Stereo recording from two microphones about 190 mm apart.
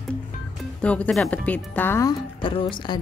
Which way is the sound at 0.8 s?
5° left (ahead or behind).